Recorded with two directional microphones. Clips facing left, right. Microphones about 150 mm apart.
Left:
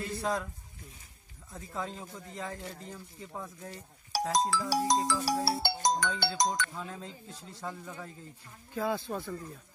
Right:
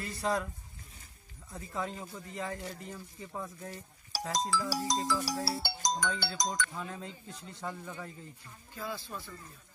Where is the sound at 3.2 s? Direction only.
5° left (ahead or behind).